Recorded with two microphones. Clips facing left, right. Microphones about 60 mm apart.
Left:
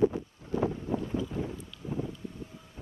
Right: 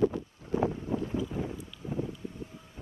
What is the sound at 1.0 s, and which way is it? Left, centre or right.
Vehicle, centre.